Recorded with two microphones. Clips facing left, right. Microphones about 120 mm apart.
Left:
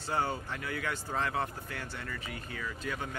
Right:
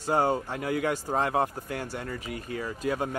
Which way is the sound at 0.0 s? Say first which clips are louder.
Right 8 dB; 45° right (ahead or behind).